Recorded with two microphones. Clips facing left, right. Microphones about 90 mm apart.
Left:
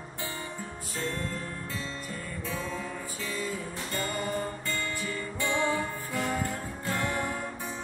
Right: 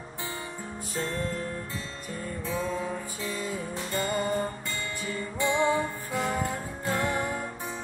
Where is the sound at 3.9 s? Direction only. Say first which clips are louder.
Right 4 dB; 25° right (ahead or behind).